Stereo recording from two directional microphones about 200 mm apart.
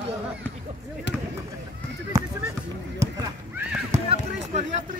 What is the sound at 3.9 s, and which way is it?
Basketball bounce, 35° right (ahead or behind).